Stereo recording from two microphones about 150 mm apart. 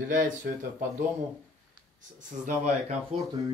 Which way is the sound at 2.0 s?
60° right (ahead or behind).